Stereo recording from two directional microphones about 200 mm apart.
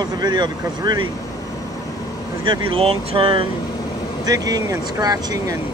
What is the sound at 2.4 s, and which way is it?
Speech, 25° right (ahead or behind).